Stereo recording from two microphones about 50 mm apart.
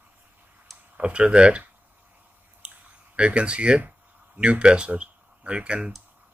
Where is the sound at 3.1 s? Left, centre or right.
Right.